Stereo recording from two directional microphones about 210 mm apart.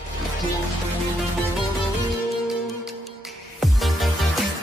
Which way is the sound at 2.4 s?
Centre (ahead or behind).